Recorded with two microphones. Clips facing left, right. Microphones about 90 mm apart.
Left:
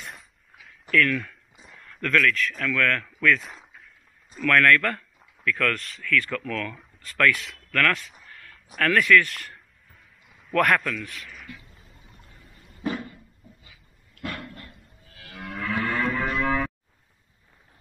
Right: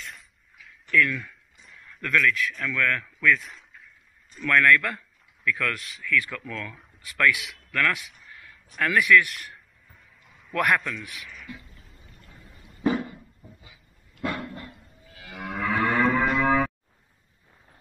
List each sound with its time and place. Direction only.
0.0 s a sound: 5° left (ahead or behind)
0.9 s speech: 10° right (ahead or behind)
1.6 s a sound: centre (ahead or behind)
2.0 s speech: 5° right (ahead or behind)
12.8 s dog: 20° right (ahead or behind)
14.5 s moo: 25° right (ahead or behind); by 15.9 s 10° right (ahead or behind)
16.0 s livestock: 10° right (ahead or behind)